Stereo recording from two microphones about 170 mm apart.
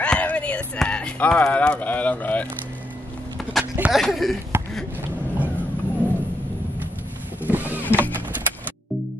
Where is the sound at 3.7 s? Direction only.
5° right (ahead or behind).